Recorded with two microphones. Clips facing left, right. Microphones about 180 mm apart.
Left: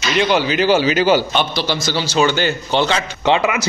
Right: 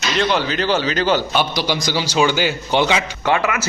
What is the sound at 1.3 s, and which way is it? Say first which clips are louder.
A man's voice: even; 10° right (ahead or behind).